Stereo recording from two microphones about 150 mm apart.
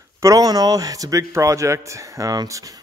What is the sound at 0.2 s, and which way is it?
Speech, 25° right (ahead or behind).